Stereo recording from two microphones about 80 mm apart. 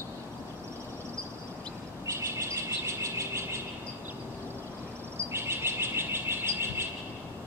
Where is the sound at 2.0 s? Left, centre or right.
Right.